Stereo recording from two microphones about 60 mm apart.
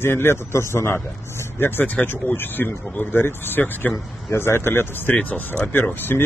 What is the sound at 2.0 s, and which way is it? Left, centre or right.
Speech, left.